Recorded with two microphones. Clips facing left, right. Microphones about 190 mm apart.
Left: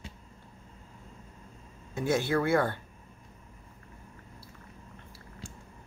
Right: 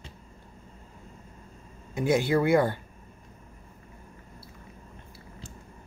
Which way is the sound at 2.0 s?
15° right (ahead or behind).